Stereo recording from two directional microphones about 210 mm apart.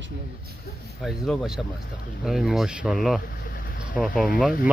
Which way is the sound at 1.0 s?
Centre (ahead or behind).